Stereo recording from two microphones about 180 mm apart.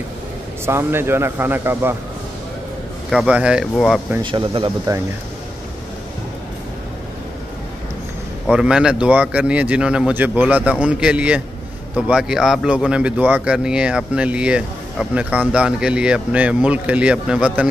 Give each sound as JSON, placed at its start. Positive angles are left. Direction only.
{"t": 0.7, "sound": "speech", "side_deg": -15}
{"t": 3.1, "sound": "speech", "side_deg": -5}
{"t": 4.2, "sound": "speech", "side_deg": -30}
{"t": 8.5, "sound": "speech", "side_deg": -5}